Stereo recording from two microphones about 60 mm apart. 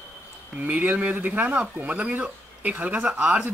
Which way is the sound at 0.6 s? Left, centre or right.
Right.